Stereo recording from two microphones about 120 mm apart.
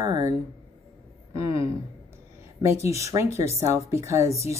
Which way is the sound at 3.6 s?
25° right (ahead or behind).